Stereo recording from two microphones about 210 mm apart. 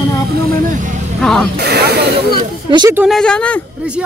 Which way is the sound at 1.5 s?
50° right (ahead or behind).